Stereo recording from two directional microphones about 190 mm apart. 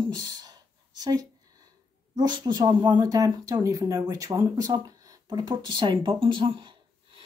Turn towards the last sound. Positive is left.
turn(degrees=-25)  # may be behind; listen again after turning